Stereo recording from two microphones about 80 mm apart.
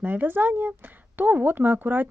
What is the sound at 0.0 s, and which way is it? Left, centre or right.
Speech, right.